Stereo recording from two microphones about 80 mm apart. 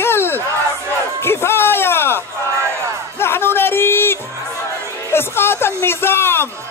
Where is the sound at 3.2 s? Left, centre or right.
Left.